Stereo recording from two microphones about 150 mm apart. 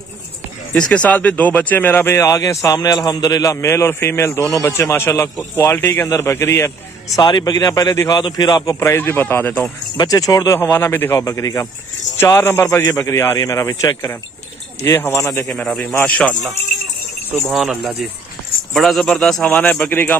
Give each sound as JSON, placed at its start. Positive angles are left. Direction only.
{"t": 0.7, "sound": "speech", "side_deg": 5}
{"t": 7.2, "sound": "a man's voice", "side_deg": 30}
{"t": 9.9, "sound": "a man's voice", "side_deg": 25}
{"t": 15.4, "sound": "speech", "side_deg": 0}
{"t": 17.5, "sound": "speech", "side_deg": 0}